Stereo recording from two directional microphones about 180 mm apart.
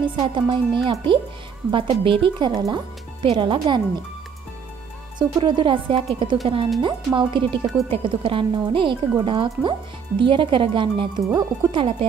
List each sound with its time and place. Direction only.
0.1 s speech: 25° right (ahead or behind)
5.2 s speech: 25° right (ahead or behind)